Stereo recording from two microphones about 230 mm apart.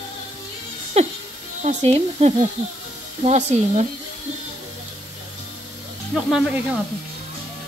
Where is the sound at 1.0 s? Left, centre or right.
Right.